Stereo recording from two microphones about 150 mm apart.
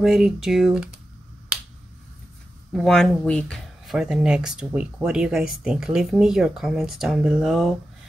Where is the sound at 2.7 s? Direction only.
5° left (ahead or behind).